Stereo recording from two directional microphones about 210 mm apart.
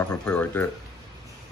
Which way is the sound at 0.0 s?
5° left (ahead or behind).